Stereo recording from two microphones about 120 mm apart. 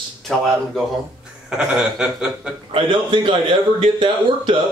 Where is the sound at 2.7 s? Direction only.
45° right (ahead or behind).